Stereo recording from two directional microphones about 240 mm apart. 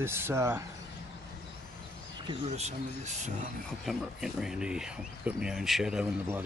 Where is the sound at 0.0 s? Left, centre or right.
Centre.